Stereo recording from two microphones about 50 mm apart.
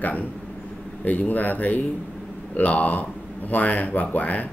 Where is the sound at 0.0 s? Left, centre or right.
Left.